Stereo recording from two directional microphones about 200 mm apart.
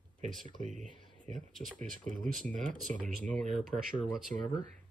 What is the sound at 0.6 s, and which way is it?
Speech, 40° right (ahead or behind).